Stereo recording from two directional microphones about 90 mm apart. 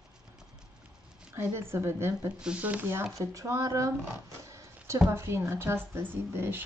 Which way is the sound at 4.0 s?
30° right (ahead or behind).